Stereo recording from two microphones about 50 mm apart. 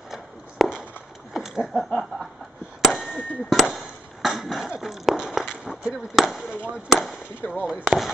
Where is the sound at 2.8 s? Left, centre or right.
Centre.